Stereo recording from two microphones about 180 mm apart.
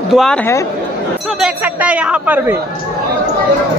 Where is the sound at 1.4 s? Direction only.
10° right (ahead or behind).